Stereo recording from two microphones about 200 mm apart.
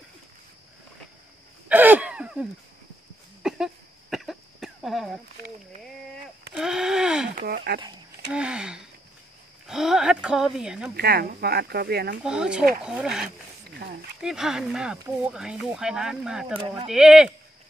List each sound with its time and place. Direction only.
1.7 s a sound: 10° right (ahead or behind)
3.4 s cough: 5° right (ahead or behind)
6.5 s wheeze: 5° right (ahead or behind)
7.3 s speech: 55° right (ahead or behind)
8.3 s speech: 5° right (ahead or behind)
11.0 s speech: 50° right (ahead or behind)
12.2 s speech: 5° right (ahead or behind)
14.2 s speech: 5° right (ahead or behind)